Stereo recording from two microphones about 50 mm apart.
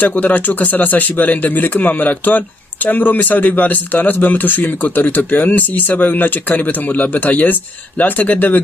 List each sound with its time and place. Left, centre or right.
0.0 s speech: left